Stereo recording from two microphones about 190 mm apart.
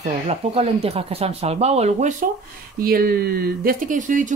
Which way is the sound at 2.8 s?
50° right (ahead or behind).